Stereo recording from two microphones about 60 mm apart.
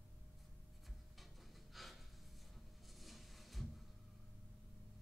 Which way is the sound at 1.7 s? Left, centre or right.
Centre.